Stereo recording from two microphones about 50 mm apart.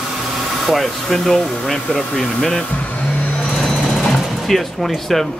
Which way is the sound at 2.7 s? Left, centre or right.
Left.